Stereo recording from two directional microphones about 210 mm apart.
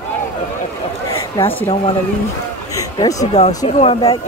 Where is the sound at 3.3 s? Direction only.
30° left (ahead or behind).